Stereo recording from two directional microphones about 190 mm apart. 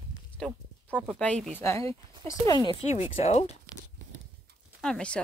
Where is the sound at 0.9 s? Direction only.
5° right (ahead or behind).